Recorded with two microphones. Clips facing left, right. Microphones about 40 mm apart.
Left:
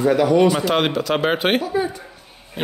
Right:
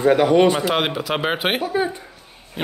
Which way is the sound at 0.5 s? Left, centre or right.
Centre.